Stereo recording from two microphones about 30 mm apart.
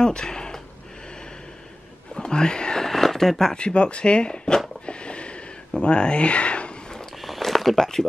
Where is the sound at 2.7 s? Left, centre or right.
Centre.